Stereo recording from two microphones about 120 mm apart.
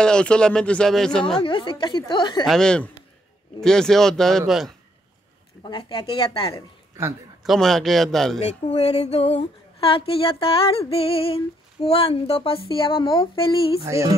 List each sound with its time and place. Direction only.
0.0 s speech: 5° left (ahead or behind)
1.4 s a woman's voice: 45° left (ahead or behind)
2.4 s speech: 5° left (ahead or behind)
5.6 s a sound: 40° left (ahead or behind)
7.4 s speech: centre (ahead or behind)
8.4 s a sound: 65° left (ahead or behind); by 13.7 s 45° left (ahead or behind)
13.8 s music: 25° right (ahead or behind)